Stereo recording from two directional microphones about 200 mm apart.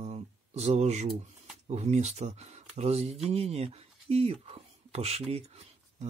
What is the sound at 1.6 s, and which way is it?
Speech, 35° right (ahead or behind).